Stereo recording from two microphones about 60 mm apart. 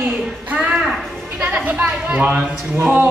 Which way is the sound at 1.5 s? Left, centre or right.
Right.